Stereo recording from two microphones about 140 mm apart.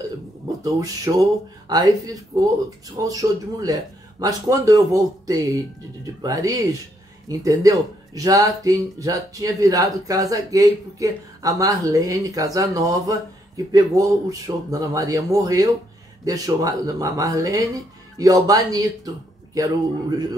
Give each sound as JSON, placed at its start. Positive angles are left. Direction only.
{"t": 0.7, "sound": "speech", "side_deg": -25}